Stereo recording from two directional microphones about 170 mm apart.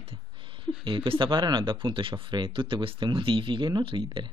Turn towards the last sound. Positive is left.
turn(degrees=-30)  # may be behind; listen again after turning